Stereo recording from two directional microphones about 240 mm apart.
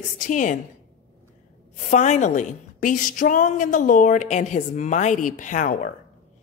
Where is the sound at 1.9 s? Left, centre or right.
Left.